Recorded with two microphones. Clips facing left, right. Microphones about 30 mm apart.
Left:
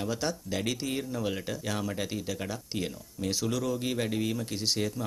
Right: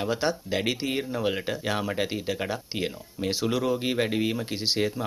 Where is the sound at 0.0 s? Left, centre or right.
Right.